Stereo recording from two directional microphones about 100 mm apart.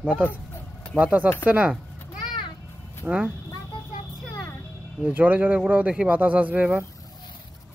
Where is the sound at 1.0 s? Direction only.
15° right (ahead or behind).